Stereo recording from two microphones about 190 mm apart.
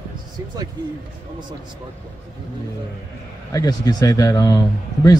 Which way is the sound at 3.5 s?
20° left (ahead or behind).